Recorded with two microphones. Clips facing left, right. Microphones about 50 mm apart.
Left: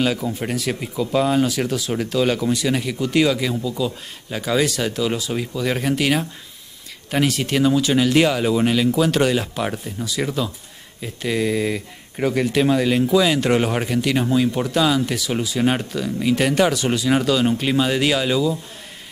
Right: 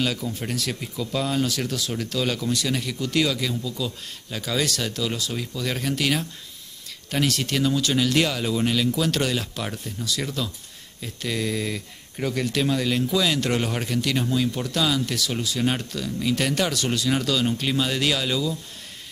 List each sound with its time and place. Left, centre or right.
0.0 s speech: centre